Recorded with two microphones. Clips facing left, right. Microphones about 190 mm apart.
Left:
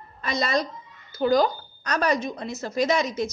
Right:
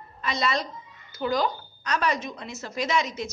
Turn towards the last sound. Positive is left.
turn(degrees=40)  # may be behind; listen again after turning